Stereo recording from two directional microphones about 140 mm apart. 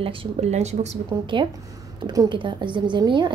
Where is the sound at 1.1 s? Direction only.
35° right (ahead or behind).